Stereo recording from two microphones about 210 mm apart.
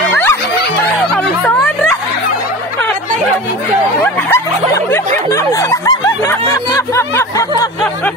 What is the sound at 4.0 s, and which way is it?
Speech, 10° left (ahead or behind).